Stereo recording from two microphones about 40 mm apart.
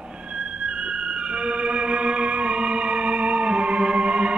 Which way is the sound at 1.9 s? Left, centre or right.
Right.